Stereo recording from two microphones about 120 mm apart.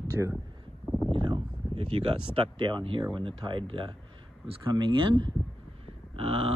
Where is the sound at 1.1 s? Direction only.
40° right (ahead or behind).